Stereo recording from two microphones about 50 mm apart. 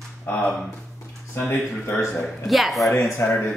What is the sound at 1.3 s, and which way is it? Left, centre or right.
Speech, left.